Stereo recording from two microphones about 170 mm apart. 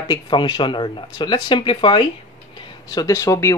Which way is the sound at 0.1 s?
25° left (ahead or behind).